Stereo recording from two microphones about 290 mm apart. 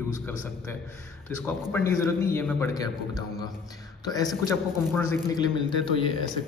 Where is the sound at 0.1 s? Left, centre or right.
Centre.